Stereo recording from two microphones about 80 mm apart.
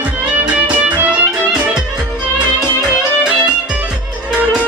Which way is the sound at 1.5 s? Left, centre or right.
Centre.